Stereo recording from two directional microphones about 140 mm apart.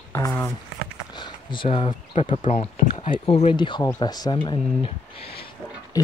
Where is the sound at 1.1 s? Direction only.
35° left (ahead or behind).